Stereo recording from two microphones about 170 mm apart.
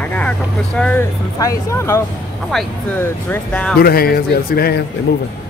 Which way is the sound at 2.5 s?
Centre (ahead or behind).